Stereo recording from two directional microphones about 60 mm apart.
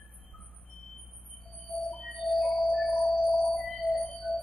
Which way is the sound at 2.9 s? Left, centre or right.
Left.